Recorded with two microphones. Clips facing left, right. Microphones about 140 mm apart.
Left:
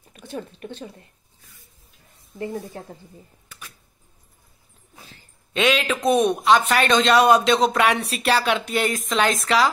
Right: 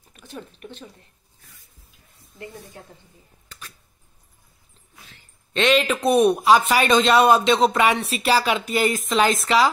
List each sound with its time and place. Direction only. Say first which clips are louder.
0.2 s speech: left 5 dB; 30° left (ahead or behind)
3.4 s a sound: right 4 dB; 10° left (ahead or behind)
5.5 s speech: right 2 dB; 5° left (ahead or behind)